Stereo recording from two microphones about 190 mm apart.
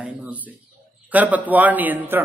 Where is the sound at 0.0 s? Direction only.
5° right (ahead or behind).